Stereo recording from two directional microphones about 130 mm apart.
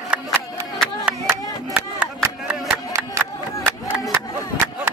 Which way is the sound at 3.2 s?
15° right (ahead or behind).